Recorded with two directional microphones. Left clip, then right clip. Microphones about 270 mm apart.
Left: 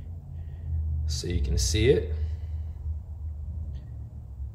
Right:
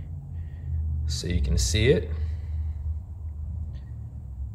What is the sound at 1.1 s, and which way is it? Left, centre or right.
Speech, centre.